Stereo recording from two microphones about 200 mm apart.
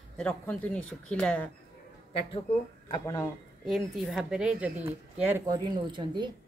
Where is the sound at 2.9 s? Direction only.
15° left (ahead or behind).